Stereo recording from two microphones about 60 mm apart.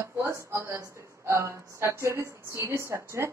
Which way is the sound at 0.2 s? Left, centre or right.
Right.